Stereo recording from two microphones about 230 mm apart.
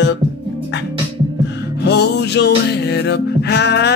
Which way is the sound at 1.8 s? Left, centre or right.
Left.